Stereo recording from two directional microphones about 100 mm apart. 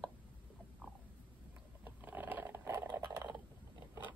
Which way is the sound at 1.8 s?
20° right (ahead or behind).